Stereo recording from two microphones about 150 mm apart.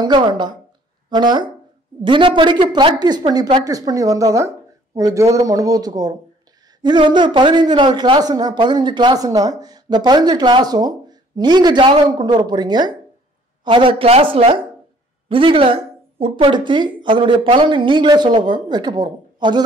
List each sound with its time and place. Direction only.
0.0 s speech: 30° right (ahead or behind)